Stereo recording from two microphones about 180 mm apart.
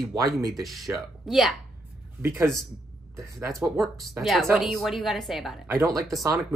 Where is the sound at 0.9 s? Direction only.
10° right (ahead or behind).